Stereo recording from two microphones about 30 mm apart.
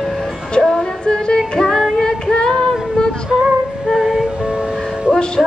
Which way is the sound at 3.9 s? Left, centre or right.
Centre.